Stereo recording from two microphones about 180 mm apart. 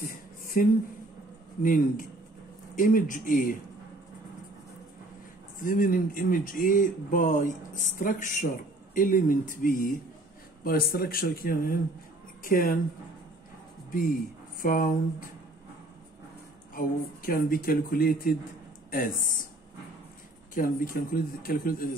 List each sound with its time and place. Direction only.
0.0 s a sound: 55° left (ahead or behind)
1.6 s speech: 50° left (ahead or behind)
5.6 s speech: 50° left (ahead or behind)
14.6 s speech: 50° left (ahead or behind)
16.7 s speech: 50° left (ahead or behind)
20.5 s speech: 50° left (ahead or behind)